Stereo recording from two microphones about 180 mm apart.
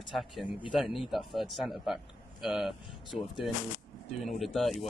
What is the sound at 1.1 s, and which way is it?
Speech, centre (ahead or behind).